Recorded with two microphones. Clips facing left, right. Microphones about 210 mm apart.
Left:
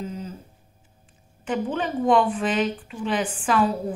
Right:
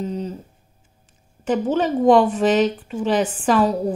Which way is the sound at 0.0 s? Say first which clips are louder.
Right 7 dB; 35° right (ahead or behind).